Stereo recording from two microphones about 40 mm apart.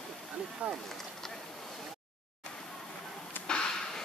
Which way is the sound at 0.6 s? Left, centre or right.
Right.